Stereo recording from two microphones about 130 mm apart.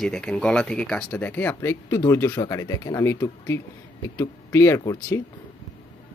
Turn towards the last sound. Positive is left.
turn(degrees=25)  # may be behind; listen again after turning